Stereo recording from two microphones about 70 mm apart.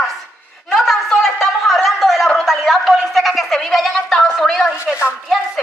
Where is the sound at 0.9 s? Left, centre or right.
Centre.